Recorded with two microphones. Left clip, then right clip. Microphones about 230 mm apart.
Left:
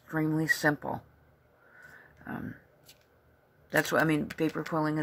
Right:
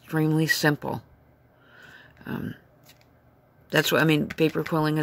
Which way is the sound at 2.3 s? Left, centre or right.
Right.